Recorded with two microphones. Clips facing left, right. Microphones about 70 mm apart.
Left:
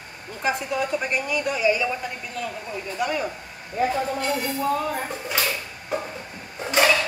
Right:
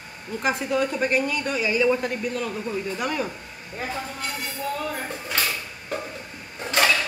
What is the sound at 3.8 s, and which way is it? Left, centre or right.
Speech, centre.